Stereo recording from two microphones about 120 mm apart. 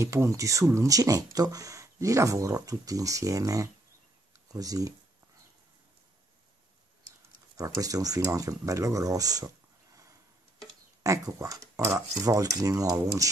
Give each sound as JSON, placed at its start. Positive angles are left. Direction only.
{"t": 0.0, "sound": "speech", "side_deg": -25}
{"t": 7.5, "sound": "speech", "side_deg": -30}
{"t": 11.0, "sound": "speech", "side_deg": -25}